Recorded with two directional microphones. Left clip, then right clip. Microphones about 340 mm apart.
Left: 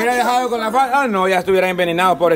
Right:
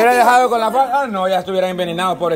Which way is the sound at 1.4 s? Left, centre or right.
Centre.